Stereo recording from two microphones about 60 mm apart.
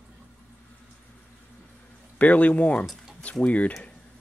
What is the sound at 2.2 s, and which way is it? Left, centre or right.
Speech, left.